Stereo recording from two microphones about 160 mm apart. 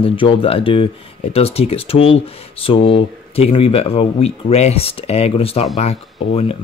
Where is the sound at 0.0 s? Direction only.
35° left (ahead or behind).